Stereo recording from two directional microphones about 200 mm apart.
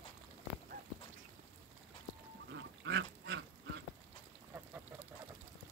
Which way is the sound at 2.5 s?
60° right (ahead or behind).